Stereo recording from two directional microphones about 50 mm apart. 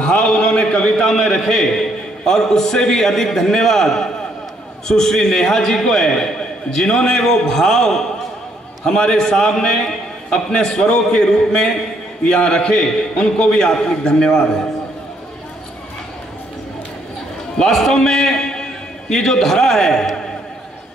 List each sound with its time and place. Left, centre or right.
0.1 s a sound: centre
0.8 s a man's voice: centre
17.6 s a man's voice: centre